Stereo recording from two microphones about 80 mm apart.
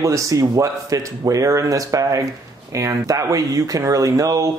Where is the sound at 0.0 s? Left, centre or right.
Right.